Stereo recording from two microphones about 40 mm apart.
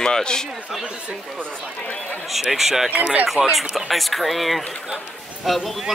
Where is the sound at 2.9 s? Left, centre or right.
Right.